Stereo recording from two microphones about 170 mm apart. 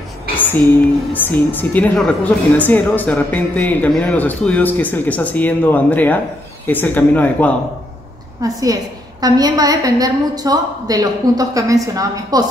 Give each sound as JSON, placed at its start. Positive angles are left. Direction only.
{"t": 0.4, "sound": "a sound", "side_deg": 10}
{"t": 1.1, "sound": "a woman's voice", "side_deg": 10}
{"t": 8.4, "sound": "a woman's voice", "side_deg": -20}